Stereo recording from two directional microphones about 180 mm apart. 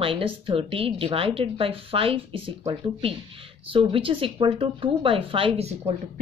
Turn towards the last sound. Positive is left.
turn(degrees=-35)  # may be behind; listen again after turning